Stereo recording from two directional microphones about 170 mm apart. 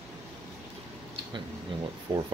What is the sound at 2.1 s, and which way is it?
Speech, 25° right (ahead or behind).